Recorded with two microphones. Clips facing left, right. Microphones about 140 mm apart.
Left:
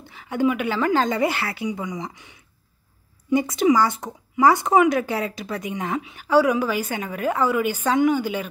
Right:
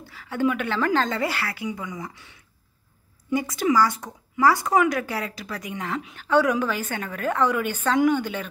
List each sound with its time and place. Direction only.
0.1 s speech: 20° left (ahead or behind)
1.0 s a woman's voice: 20° left (ahead or behind)